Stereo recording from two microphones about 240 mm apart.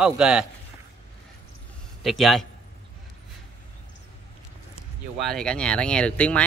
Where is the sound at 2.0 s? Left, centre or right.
Centre.